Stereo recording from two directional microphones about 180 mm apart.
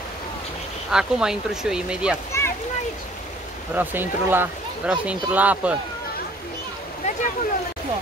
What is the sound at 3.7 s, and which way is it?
Speech, 10° right (ahead or behind).